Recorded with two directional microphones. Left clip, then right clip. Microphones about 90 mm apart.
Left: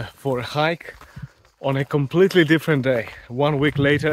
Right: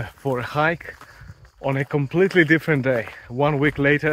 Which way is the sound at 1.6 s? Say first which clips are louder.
Left 1 dB; 70° left (ahead or behind).